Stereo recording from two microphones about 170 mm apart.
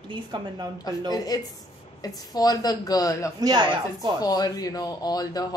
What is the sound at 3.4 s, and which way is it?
Speech, 25° right (ahead or behind).